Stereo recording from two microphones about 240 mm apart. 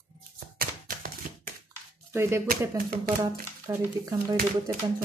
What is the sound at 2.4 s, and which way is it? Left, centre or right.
Speech, right.